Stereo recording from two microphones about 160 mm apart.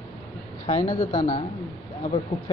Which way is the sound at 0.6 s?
40° left (ahead or behind).